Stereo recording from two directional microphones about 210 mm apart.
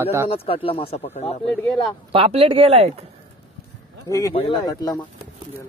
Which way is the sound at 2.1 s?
25° right (ahead or behind).